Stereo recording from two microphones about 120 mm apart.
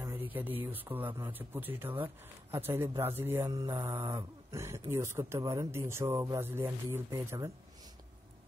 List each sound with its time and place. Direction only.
0.0 s speech: 15° right (ahead or behind)
3.4 s speech: 35° right (ahead or behind)